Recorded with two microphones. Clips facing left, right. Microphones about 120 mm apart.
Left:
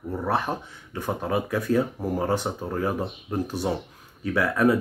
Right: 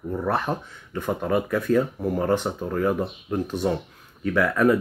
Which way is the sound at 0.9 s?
15° left (ahead or behind).